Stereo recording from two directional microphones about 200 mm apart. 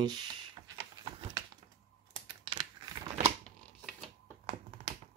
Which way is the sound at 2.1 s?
20° right (ahead or behind).